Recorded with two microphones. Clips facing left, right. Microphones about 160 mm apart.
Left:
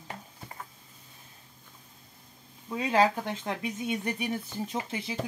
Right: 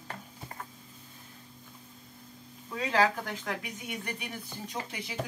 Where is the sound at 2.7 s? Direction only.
20° left (ahead or behind).